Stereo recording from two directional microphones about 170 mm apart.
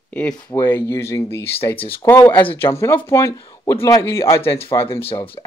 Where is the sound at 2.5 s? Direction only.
15° left (ahead or behind).